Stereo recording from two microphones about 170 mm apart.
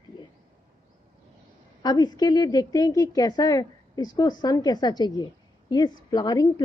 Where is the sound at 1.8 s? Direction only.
25° left (ahead or behind).